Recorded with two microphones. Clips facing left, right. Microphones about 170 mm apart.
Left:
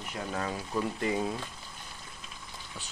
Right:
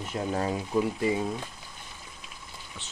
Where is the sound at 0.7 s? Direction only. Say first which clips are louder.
Right 4 dB; 5° right (ahead or behind).